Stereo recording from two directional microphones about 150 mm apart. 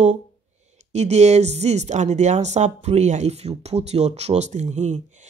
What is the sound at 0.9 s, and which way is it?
Speech, 50° right (ahead or behind).